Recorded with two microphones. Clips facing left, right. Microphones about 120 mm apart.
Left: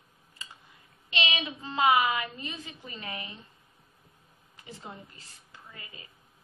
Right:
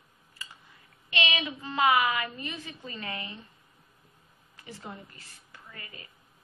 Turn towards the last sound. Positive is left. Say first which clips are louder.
# right 1 dB
turn(degrees=20)  # may be behind; listen again after turning